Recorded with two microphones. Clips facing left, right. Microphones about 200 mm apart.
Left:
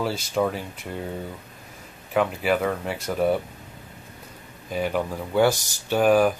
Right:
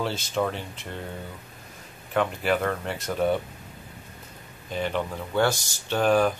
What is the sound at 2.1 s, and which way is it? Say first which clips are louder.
Speech: left 2 dB; 5° left (ahead or behind).